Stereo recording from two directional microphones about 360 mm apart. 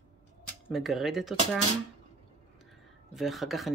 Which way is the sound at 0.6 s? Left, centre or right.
Centre.